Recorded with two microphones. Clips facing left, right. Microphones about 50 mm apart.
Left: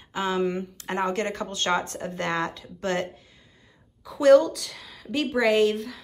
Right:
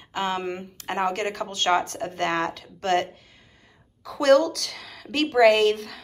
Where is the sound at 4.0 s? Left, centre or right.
Right.